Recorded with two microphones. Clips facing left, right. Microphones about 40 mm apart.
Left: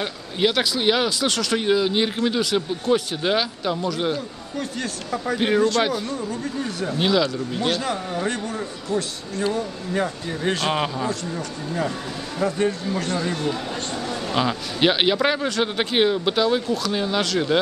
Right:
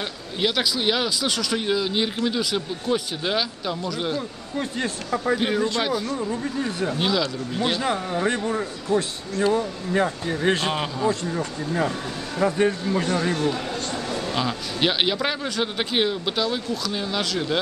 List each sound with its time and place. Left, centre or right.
0.0 s speech: centre
4.6 s speech: right
5.1 s speech: centre
5.8 s speech: centre
6.2 s speech: centre
7.0 s speech: centre
7.6 s speech: centre
9.5 s speech: centre
10.7 s speech: centre
11.2 s speech: centre
13.4 s a sound: centre
14.3 s speech: centre